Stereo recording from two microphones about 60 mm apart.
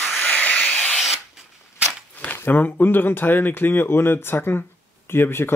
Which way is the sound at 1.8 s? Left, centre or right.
Left.